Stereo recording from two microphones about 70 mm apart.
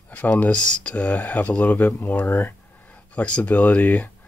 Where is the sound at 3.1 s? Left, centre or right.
Centre.